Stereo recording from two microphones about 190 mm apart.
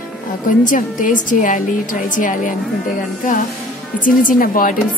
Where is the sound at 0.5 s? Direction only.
45° left (ahead or behind).